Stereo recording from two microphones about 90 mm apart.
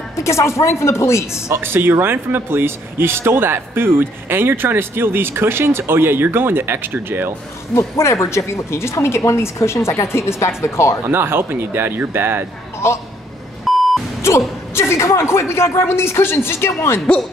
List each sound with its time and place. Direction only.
0.1 s speech: 30° left (ahead or behind)
1.5 s speech: 25° right (ahead or behind)
7.7 s speech: 30° left (ahead or behind)
11.1 s speech: 25° right (ahead or behind)
12.8 s a woman's voice: 30° left (ahead or behind)
13.7 s beep: centre (ahead or behind)
14.7 s a woman's voice: 30° left (ahead or behind)